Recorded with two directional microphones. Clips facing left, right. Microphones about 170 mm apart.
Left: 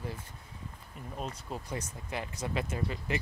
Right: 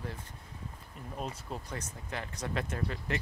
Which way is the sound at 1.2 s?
5° left (ahead or behind).